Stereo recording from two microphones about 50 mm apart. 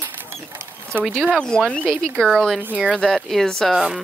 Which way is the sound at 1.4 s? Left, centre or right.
Centre.